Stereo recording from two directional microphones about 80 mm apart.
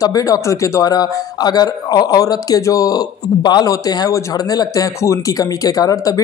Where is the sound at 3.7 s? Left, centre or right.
Left.